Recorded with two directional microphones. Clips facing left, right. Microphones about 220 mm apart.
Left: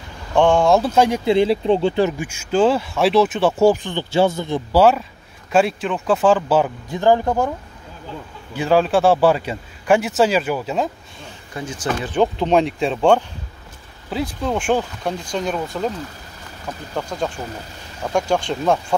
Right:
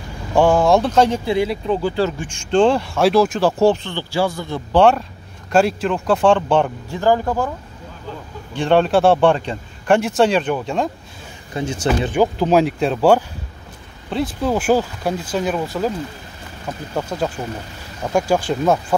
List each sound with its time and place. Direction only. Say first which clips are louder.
0.3 s speech: right 1 dB; 5° right (ahead or behind); by 1.3 s 15° left (ahead or behind)
1.3 s speech: left 3 dB; 30° left (ahead or behind)
4.7 s speech: right 1 dB; 5° left (ahead or behind)
7.0 s speech: left 1 dB; 20° left (ahead or behind)
8.5 s speech: right 1 dB; 5° left (ahead or behind)
11.5 s speech: right 5 dB; 25° right (ahead or behind)
12.1 s speech: left 1 dB; 5° right (ahead or behind)
17.0 s speech: right 2 dB; 5° right (ahead or behind)